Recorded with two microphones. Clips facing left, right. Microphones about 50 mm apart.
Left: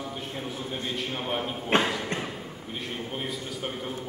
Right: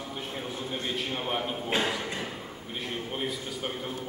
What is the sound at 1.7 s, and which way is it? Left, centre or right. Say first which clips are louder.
Speech: left 5 dB; left.